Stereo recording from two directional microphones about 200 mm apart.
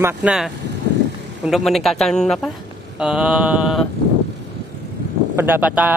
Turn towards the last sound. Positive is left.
turn(degrees=-10)  # may be behind; listen again after turning